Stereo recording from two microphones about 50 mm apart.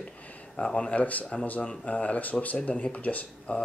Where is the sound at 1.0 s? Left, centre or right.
Left.